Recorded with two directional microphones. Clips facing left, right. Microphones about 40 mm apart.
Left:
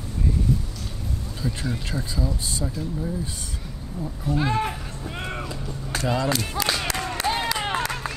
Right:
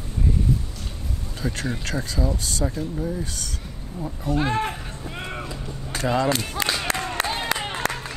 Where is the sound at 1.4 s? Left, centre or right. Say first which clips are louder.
Right 2 dB; right.